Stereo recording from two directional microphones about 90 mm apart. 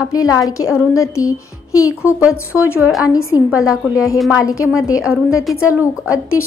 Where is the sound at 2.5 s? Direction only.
15° right (ahead or behind).